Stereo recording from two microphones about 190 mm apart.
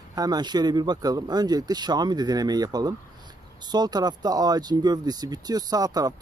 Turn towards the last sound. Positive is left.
turn(degrees=-20)  # may be behind; listen again after turning